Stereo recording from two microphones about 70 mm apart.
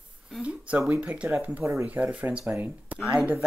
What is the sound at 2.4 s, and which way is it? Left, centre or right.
Speech, right.